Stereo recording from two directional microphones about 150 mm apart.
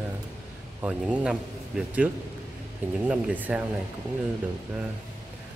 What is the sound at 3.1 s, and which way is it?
Speech, 10° right (ahead or behind).